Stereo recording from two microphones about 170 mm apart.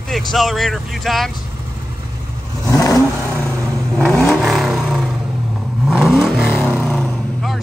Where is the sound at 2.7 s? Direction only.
20° left (ahead or behind).